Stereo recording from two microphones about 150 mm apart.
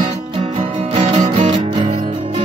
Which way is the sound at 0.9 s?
35° right (ahead or behind).